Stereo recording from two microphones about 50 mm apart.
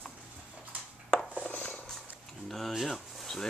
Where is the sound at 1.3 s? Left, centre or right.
Left.